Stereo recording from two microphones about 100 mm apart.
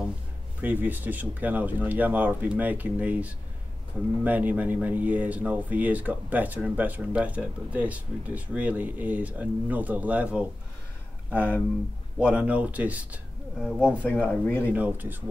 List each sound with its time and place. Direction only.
0.6 s speech: 20° right (ahead or behind)
11.2 s speech: 20° left (ahead or behind)
12.2 s speech: 10° right (ahead or behind)
14.0 s speech: 10° left (ahead or behind)
14.7 s speech: 15° right (ahead or behind)